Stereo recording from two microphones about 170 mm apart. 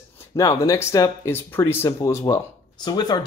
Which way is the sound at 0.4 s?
20° left (ahead or behind).